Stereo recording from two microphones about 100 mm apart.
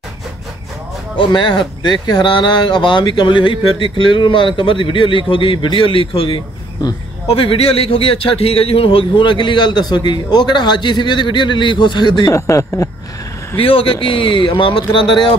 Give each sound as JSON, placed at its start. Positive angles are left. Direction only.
{"t": 1.1, "sound": "a man's voice", "side_deg": 55}
{"t": 12.3, "sound": "speech", "side_deg": 30}
{"t": 13.6, "sound": "speech", "side_deg": 65}